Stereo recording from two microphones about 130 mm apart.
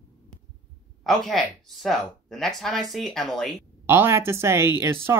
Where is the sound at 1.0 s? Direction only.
Centre (ahead or behind).